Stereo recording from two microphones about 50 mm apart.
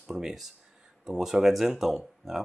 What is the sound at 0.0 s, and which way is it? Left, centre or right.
Speech, centre.